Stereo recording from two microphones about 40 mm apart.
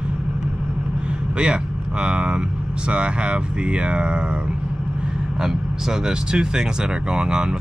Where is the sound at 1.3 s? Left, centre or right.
Right.